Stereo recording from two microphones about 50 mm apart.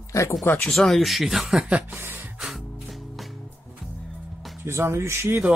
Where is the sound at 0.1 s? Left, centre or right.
Left.